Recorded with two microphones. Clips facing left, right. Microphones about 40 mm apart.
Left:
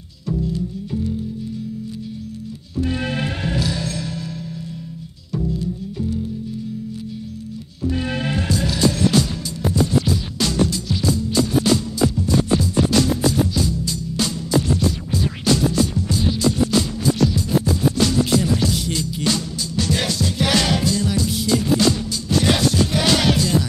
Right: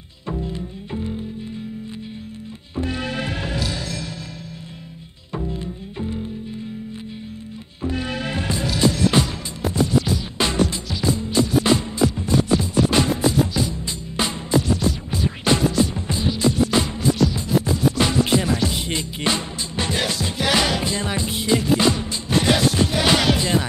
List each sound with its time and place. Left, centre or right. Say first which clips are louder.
0.3 s music: left 4 dB; right
5.3 s music: left 4 dB; right
9.1 s music: left 1 dB; right
10.4 s music: even; right